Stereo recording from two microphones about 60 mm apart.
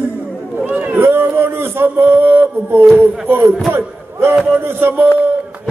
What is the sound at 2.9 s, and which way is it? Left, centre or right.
Speech, right.